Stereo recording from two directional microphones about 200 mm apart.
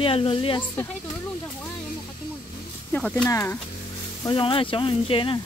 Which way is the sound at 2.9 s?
5° left (ahead or behind).